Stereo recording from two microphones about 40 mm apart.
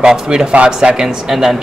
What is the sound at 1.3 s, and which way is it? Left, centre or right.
Speech, centre.